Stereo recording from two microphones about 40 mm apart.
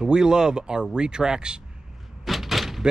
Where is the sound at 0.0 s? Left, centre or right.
Centre.